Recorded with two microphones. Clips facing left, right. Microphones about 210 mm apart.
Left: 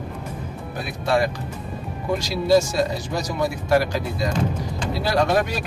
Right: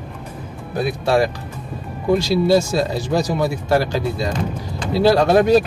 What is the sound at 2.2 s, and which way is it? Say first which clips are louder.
Speech: even; 30° right (ahead or behind).